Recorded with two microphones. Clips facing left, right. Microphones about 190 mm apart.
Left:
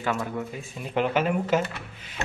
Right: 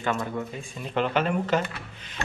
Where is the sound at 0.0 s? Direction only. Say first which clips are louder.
Even; 5° left (ahead or behind).